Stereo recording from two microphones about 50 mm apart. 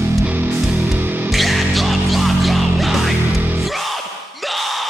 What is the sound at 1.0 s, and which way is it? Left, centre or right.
Music, right.